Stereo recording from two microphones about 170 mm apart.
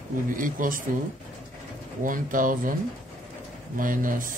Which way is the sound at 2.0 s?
55° right (ahead or behind).